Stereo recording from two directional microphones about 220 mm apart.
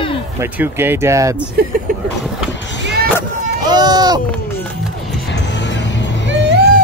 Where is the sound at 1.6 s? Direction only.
45° right (ahead or behind).